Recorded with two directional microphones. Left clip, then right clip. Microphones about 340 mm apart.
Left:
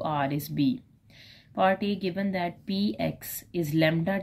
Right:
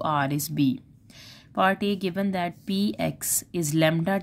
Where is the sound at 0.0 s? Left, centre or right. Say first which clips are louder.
Right 3 dB; right.